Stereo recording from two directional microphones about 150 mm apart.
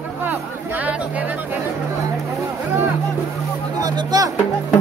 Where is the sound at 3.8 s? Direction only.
25° right (ahead or behind).